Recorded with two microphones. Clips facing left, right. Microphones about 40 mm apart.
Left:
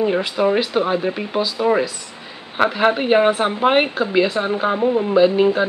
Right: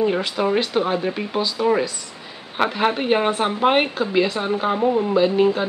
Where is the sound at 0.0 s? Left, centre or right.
Centre.